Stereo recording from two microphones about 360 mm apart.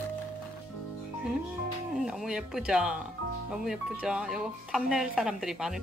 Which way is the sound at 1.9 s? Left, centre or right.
Centre.